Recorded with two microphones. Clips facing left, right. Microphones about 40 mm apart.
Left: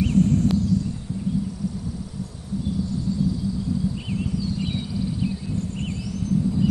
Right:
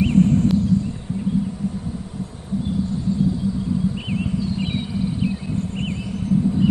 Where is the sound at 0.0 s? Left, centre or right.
Right.